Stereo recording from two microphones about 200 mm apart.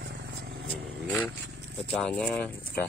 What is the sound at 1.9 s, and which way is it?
Speech, 5° left (ahead or behind).